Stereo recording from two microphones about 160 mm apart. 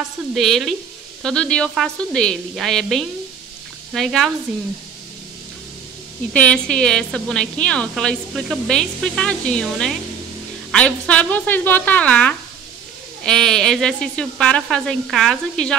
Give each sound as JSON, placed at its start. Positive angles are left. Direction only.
{"t": 0.3, "sound": "speech", "side_deg": 0}
{"t": 6.3, "sound": "a woman's voice", "side_deg": 5}